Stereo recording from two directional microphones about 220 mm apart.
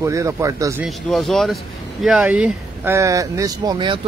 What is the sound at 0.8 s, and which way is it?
Speech, centre (ahead or behind).